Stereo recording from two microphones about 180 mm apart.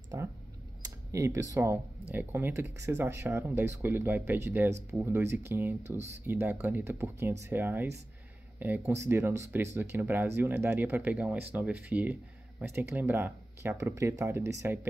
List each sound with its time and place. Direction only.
0.1 s speech: 15° right (ahead or behind)